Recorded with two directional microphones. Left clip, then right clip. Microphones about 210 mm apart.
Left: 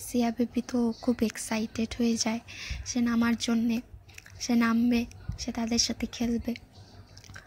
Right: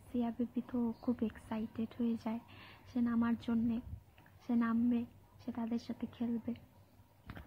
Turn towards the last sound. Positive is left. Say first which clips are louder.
# left 9 dB
turn(degrees=35)  # may be behind; listen again after turning